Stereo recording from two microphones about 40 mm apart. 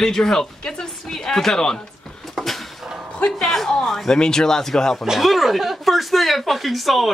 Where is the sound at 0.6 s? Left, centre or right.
Centre.